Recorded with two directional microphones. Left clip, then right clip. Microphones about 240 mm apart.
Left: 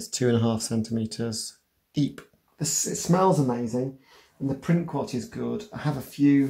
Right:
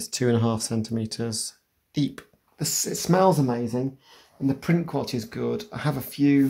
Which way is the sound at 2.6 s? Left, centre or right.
Right.